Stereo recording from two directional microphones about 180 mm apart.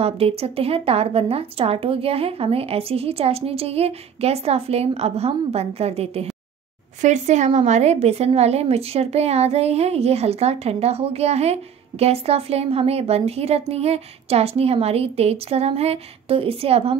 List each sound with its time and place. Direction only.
0.0 s speech: 35° right (ahead or behind)